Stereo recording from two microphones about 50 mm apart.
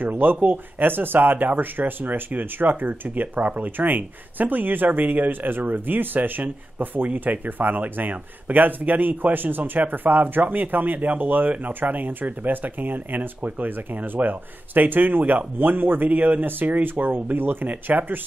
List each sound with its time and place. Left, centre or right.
0.0 s speech: right